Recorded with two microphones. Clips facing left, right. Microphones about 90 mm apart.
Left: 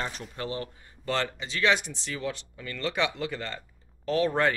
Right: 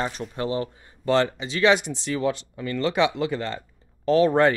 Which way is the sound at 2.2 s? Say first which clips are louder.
Right 9 dB; 25° right (ahead or behind).